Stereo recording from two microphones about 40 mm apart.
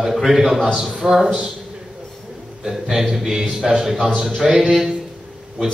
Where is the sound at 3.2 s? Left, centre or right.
Centre.